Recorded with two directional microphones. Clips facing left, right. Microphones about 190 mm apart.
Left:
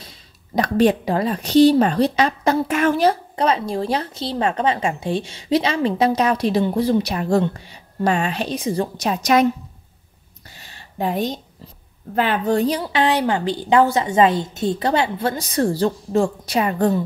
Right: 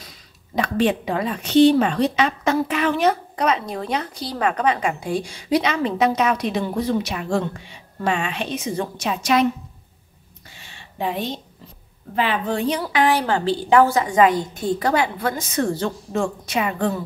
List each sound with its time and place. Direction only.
0.6 s a woman's voice: 40° left (ahead or behind)
3.0 s a woman's voice: 30° left (ahead or behind)
10.5 s a sound: 40° left (ahead or behind)
12.2 s a woman's voice: 45° left (ahead or behind)